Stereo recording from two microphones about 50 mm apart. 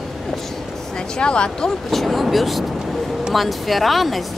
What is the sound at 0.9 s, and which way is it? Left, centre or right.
Speech, centre.